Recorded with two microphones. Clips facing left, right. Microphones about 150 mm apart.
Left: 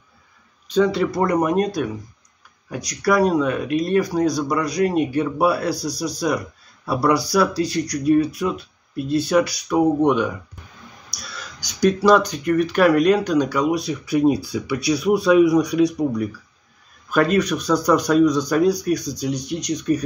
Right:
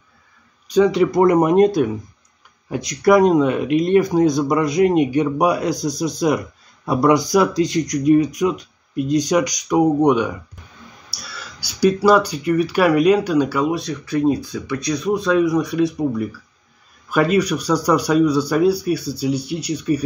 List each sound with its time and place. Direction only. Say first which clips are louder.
0.7 s speech: right 3 dB; 15° right (ahead or behind)
11.6 s speech: right 2 dB; 10° right (ahead or behind)
13.7 s speech: left 1 dB; 10° left (ahead or behind); by 20.0 s 10° right (ahead or behind)